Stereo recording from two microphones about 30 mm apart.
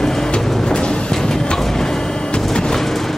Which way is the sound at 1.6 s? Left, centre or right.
Centre.